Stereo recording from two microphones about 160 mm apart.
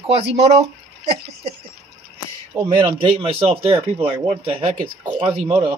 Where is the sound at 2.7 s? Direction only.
30° right (ahead or behind).